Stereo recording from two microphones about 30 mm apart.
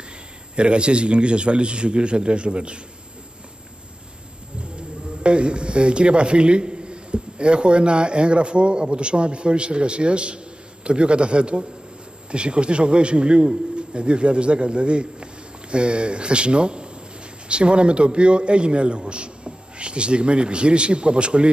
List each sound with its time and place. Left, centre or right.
0.6 s a man's voice: right
4.7 s a man's voice: right